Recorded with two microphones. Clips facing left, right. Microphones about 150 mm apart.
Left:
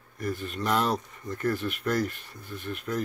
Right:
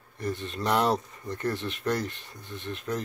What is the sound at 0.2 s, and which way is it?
Speech, 25° right (ahead or behind).